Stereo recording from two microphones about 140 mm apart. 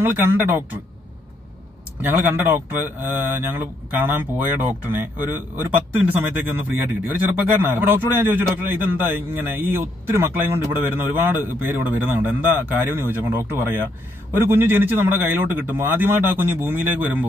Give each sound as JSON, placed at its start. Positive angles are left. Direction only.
{"t": 0.0, "sound": "a man's voice", "side_deg": -15}
{"t": 2.0, "sound": "a man's voice", "side_deg": -15}